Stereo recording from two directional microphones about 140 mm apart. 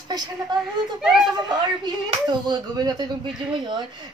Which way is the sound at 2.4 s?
30° right (ahead or behind).